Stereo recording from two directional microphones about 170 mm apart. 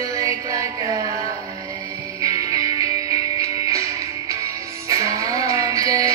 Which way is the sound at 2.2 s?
20° right (ahead or behind).